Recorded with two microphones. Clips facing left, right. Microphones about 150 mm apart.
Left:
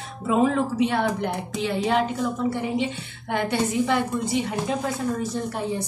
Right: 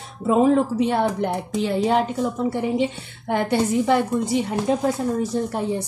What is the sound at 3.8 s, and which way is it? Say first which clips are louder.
A woman's voice: right 4 dB; 40° right (ahead or behind).